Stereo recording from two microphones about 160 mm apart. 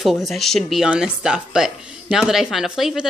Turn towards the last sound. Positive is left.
turn(degrees=-5)  # may be behind; listen again after turning